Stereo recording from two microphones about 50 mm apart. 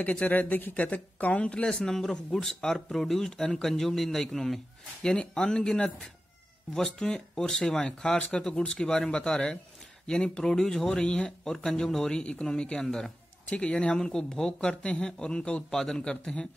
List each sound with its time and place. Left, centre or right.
0.0 s speech: left; by 4.6 s centre
5.0 s speech: centre
13.5 s speech: left
14.7 s speech: left